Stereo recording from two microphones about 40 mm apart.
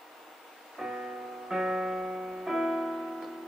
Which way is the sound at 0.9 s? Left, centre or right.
Right.